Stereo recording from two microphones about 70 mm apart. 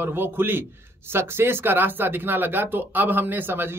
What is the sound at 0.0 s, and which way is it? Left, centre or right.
Speech, right.